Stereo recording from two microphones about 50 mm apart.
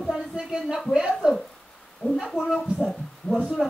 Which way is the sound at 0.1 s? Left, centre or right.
Centre.